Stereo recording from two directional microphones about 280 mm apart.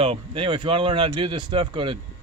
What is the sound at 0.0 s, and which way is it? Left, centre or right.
Speech, centre.